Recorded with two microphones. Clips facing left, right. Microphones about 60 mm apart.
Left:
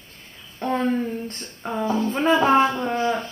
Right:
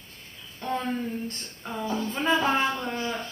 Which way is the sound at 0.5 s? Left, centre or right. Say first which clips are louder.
Left 6 dB; left.